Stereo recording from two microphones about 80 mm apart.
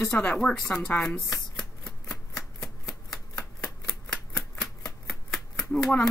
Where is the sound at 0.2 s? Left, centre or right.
Centre.